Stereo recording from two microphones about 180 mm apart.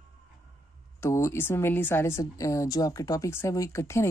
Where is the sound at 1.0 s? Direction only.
15° left (ahead or behind).